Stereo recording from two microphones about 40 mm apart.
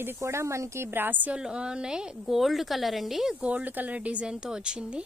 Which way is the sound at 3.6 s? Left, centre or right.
Right.